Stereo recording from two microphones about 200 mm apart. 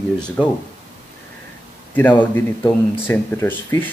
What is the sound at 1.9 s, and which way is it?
Speech, 10° left (ahead or behind).